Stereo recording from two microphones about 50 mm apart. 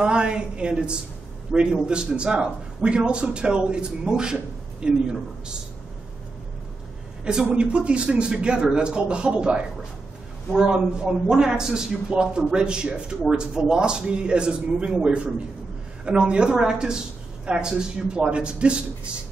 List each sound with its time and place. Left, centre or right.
0.0 s a man's voice: centre
7.4 s a man's voice: right